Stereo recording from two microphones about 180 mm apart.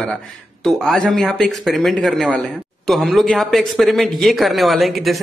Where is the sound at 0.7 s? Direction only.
Centre (ahead or behind).